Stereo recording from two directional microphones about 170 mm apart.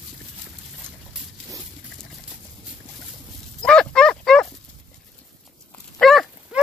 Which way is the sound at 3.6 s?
5° left (ahead or behind).